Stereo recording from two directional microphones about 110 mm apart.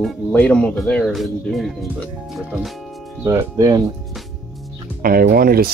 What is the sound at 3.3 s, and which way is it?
Speech, 30° right (ahead or behind).